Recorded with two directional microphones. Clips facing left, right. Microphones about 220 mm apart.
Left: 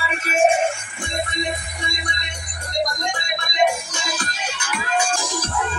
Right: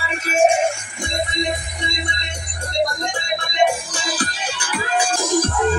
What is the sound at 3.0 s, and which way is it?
Music, 30° right (ahead or behind).